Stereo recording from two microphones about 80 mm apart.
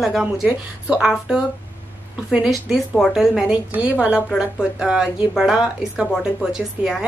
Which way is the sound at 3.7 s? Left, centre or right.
Centre.